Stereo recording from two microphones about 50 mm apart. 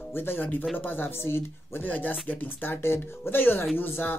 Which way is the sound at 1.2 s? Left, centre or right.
Left.